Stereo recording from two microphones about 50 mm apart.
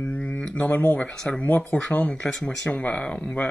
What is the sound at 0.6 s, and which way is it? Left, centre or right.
Speech, left.